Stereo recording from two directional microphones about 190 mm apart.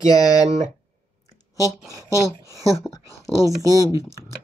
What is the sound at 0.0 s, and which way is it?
Speech, 20° left (ahead or behind).